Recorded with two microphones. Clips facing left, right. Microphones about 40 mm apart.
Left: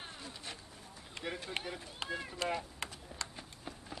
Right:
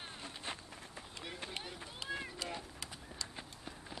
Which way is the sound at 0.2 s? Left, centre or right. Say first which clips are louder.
Right 2 dB; right.